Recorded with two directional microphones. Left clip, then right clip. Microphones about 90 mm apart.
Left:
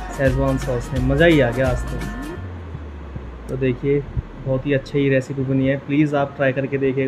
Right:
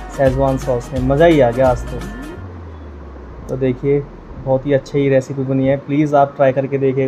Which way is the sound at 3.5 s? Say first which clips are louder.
Right 4 dB; 15° right (ahead or behind).